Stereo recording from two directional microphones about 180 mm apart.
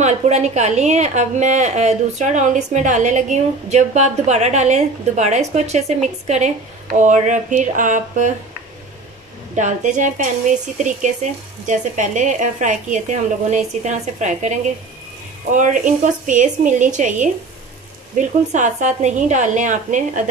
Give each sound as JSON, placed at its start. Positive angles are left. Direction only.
{"t": 0.0, "sound": "a woman's voice", "side_deg": -40}
{"t": 9.6, "sound": "a woman's voice", "side_deg": -40}
{"t": 11.6, "sound": "a woman's voice", "side_deg": -45}